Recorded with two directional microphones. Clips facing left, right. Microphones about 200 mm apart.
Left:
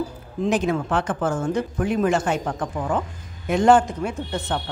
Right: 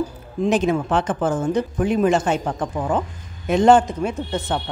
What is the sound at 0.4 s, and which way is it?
Speech, 20° right (ahead or behind).